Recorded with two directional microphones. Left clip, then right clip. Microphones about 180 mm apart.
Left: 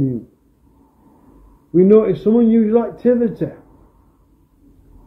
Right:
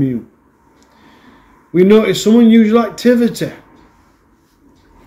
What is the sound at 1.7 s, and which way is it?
Speech, 20° right (ahead or behind).